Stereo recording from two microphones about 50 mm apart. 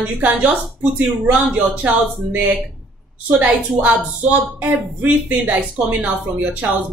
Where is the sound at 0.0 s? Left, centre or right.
Right.